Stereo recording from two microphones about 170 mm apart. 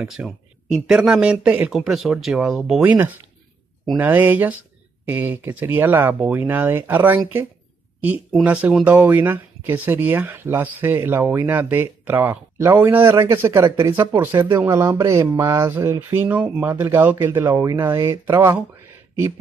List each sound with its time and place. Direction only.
0.0 s speech: 5° right (ahead or behind)